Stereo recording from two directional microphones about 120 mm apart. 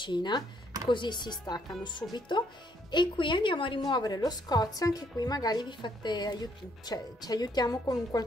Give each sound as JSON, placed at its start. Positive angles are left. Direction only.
{"t": 0.0, "sound": "a woman's voice", "side_deg": 40}